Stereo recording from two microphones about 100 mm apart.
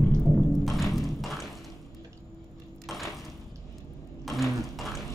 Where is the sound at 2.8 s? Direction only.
Centre (ahead or behind).